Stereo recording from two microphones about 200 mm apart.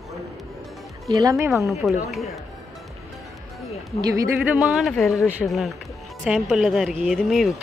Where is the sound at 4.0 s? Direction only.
15° right (ahead or behind).